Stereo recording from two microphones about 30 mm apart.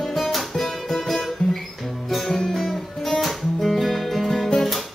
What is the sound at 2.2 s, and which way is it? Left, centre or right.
Music, centre.